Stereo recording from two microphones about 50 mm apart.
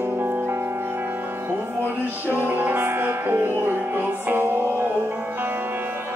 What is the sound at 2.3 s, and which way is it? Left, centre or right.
Music, right.